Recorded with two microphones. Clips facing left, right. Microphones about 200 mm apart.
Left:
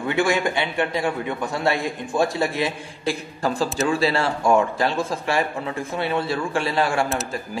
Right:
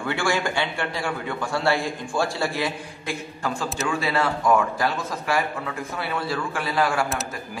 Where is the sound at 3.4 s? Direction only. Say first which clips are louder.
Left 6 dB; 35° left (ahead or behind).